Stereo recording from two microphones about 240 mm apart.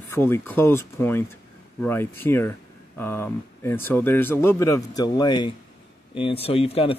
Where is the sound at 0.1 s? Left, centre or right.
Centre.